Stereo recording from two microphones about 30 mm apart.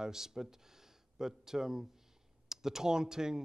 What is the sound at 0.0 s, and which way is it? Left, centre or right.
Speech, centre.